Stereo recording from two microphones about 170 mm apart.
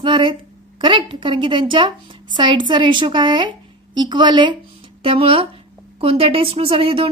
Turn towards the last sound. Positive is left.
turn(degrees=-30)  # may be behind; listen again after turning